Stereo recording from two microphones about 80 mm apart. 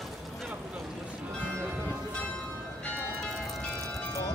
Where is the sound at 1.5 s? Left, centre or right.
Right.